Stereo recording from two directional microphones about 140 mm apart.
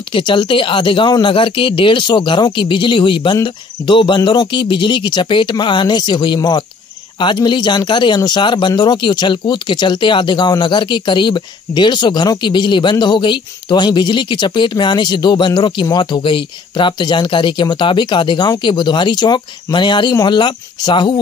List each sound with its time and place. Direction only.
0.1 s speech: 35° left (ahead or behind)